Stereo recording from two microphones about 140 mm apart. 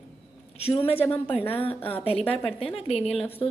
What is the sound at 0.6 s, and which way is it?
A woman's voice, 45° left (ahead or behind).